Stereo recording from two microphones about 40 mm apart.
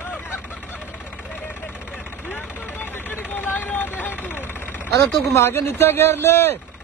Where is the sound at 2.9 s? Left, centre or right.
Left.